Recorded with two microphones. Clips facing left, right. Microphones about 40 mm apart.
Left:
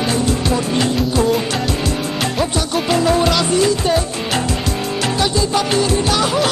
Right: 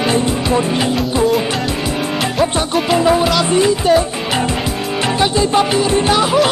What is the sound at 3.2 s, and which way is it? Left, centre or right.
Speech, centre.